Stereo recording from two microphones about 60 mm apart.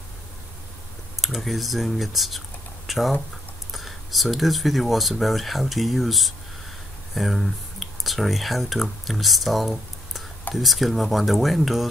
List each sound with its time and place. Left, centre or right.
1.2 s speech: centre